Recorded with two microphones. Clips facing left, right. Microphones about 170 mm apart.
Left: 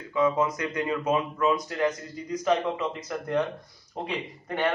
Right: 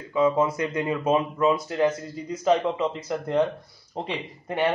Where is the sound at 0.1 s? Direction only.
30° right (ahead or behind).